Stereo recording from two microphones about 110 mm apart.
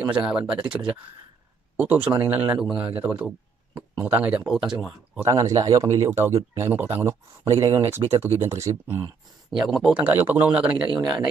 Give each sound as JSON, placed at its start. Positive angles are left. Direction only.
{"t": 0.0, "sound": "speech", "side_deg": -10}
{"t": 1.8, "sound": "speech", "side_deg": -15}
{"t": 4.5, "sound": "speech", "side_deg": -5}
{"t": 5.2, "sound": "speech", "side_deg": -30}
{"t": 9.5, "sound": "speech", "side_deg": -5}
{"t": 9.9, "sound": "speech", "side_deg": -20}
{"t": 10.9, "sound": "speech", "side_deg": -40}